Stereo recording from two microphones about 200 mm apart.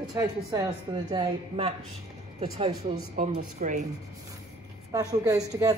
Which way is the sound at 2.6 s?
30° right (ahead or behind).